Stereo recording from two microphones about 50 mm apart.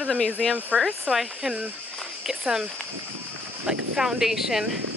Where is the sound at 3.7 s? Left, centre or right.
Centre.